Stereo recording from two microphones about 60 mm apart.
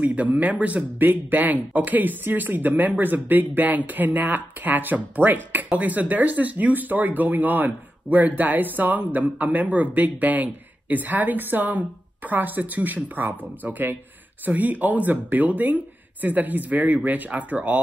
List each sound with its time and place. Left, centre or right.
0.0 s speech: right